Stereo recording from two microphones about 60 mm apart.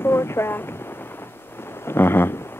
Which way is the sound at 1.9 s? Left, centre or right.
Left.